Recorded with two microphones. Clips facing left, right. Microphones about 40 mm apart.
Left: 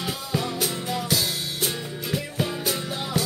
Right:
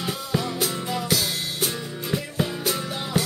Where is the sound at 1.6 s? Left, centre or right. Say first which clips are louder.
Even; centre.